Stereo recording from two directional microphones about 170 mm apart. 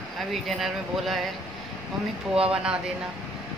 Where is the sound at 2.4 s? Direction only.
5° right (ahead or behind).